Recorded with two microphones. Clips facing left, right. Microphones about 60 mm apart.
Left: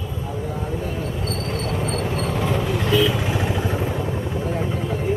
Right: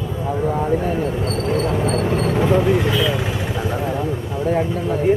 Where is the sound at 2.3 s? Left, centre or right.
Right.